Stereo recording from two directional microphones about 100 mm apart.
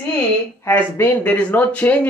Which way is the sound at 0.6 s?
20° left (ahead or behind).